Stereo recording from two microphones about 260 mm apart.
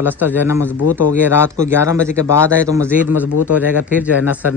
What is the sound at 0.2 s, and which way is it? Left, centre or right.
Speech, centre.